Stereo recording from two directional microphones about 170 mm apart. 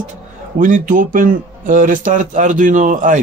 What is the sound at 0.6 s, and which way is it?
Speech, 50° right (ahead or behind).